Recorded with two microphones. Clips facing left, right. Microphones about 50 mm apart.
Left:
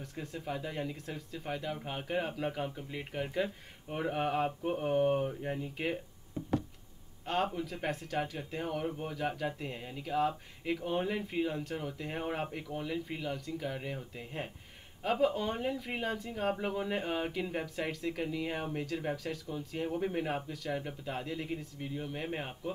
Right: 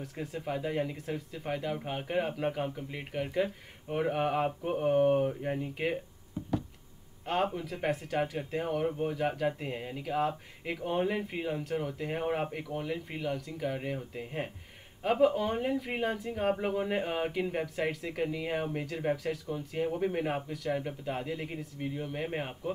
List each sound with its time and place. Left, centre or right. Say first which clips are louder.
0.0 s speech: right 3 dB; centre
7.2 s speech: right 2 dB; centre